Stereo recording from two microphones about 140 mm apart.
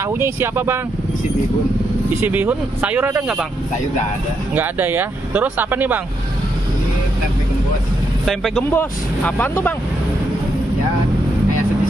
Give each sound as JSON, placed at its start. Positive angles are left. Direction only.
{"t": 0.0, "sound": "speech", "side_deg": -20}
{"t": 2.1, "sound": "speech", "side_deg": -15}
{"t": 4.6, "sound": "speech", "side_deg": -15}
{"t": 8.6, "sound": "speech", "side_deg": 15}